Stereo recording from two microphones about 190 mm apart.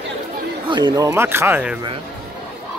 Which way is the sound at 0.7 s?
25° right (ahead or behind).